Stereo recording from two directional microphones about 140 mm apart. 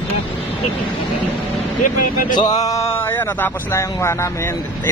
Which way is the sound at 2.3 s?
25° left (ahead or behind).